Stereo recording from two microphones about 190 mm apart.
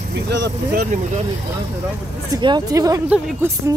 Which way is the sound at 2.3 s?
25° right (ahead or behind).